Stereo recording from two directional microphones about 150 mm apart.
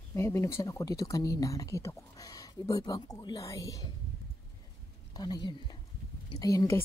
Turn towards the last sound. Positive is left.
turn(degrees=25)  # may be behind; listen again after turning